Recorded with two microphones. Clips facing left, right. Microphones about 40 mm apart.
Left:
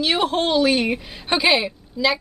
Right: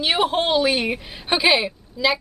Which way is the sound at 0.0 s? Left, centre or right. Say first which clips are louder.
Even; centre.